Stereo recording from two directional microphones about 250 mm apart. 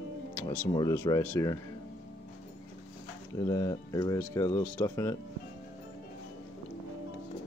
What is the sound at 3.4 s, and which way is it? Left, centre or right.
Speech, centre.